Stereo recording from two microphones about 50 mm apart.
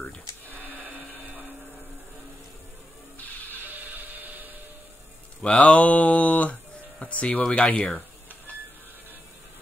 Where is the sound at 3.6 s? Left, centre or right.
Right.